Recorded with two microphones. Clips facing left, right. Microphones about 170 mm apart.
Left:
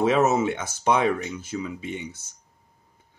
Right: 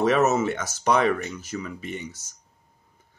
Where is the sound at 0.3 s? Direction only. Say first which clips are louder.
Even; 10° left (ahead or behind).